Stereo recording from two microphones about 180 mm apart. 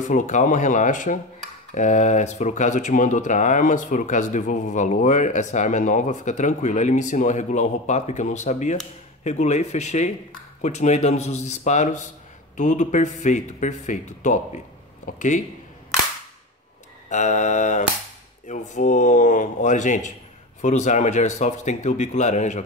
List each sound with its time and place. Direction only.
0.0 s speech: 45° left (ahead or behind)
17.1 s speech: 40° left (ahead or behind)